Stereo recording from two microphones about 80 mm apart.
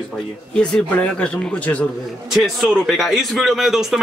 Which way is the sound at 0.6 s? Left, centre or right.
Centre.